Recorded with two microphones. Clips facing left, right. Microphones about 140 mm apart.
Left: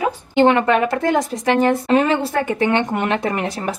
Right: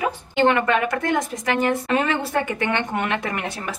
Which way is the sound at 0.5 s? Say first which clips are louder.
Left 4 dB; 30° left (ahead or behind).